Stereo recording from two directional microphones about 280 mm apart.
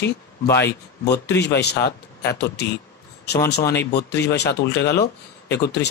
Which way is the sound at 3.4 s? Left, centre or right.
Left.